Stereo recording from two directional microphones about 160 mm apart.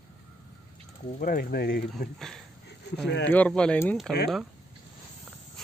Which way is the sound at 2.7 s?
90° left.